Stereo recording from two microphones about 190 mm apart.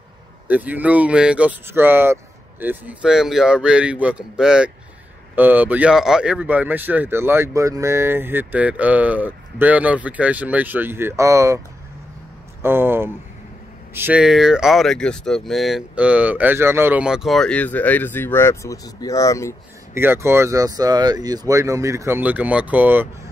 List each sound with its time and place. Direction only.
0.5 s speech: 10° right (ahead or behind)
12.6 s speech: 10° right (ahead or behind); by 19.5 s 15° left (ahead or behind)
19.9 s speech: 15° right (ahead or behind)